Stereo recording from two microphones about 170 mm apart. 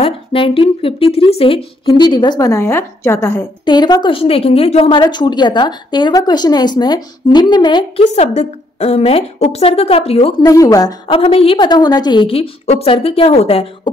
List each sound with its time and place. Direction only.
0.0 s a woman's voice: 30° left (ahead or behind)
8.0 s speech: 40° left (ahead or behind)
10.4 s a woman's voice: 20° left (ahead or behind)
11.1 s speech: 35° left (ahead or behind)